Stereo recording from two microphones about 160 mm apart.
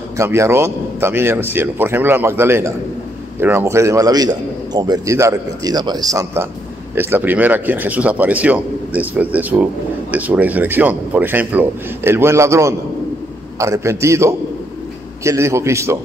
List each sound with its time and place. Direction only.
0.2 s a man's voice: 15° right (ahead or behind)